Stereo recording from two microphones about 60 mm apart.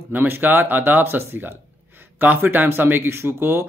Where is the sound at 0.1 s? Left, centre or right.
Right.